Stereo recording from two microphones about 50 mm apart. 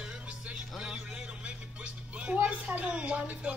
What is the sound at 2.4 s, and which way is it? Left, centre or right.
A woman's voice, right.